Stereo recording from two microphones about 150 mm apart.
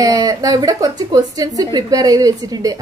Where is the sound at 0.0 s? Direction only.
25° right (ahead or behind).